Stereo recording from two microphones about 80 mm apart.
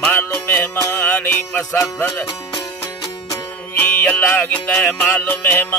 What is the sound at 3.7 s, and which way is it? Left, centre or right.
Music, left.